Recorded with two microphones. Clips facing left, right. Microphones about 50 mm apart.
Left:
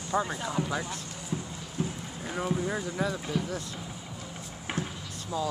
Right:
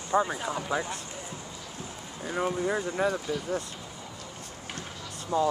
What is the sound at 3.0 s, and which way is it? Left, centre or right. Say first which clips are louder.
Speech: right 3 dB; right.